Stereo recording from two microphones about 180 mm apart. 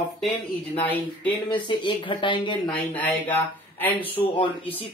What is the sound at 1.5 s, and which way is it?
Speech, 25° left (ahead or behind).